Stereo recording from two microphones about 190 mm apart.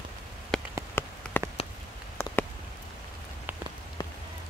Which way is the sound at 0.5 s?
5° left (ahead or behind).